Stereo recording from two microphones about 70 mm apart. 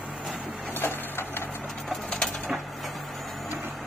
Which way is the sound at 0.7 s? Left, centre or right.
Left.